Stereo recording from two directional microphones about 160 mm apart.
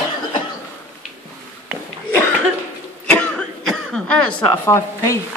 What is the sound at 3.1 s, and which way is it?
Cough, 5° left (ahead or behind).